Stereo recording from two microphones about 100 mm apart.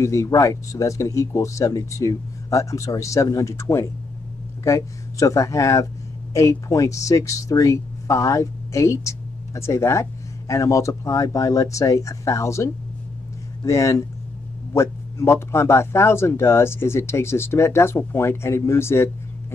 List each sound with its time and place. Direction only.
0.0 s a man's voice: 30° left (ahead or behind)